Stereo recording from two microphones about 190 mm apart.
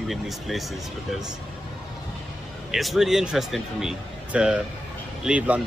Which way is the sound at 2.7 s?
Centre (ahead or behind).